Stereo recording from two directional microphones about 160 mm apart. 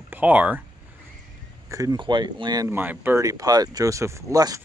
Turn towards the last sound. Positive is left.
turn(degrees=-20)  # may be behind; listen again after turning